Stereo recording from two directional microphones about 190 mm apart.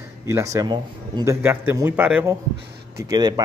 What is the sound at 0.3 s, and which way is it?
Speech, 15° right (ahead or behind).